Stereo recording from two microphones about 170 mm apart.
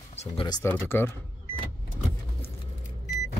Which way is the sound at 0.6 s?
15° left (ahead or behind).